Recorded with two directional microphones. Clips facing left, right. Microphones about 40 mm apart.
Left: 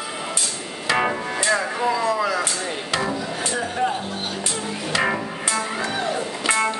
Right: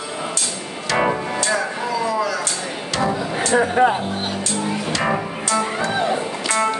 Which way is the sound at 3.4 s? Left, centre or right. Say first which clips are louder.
Right 10 dB; right.